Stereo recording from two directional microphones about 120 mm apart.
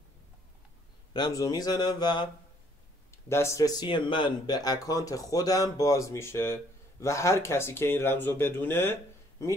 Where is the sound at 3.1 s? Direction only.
20° left (ahead or behind).